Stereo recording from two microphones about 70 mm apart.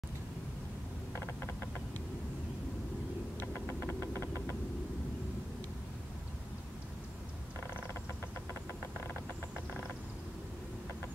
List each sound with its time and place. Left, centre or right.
3.3 s vehicle: left